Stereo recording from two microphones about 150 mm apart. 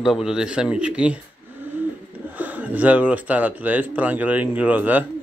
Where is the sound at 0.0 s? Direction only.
5° right (ahead or behind).